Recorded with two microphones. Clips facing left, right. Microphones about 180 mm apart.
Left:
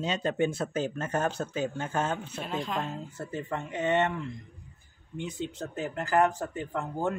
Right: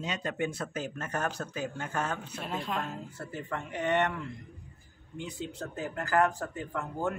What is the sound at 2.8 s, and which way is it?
Speech, 25° left (ahead or behind).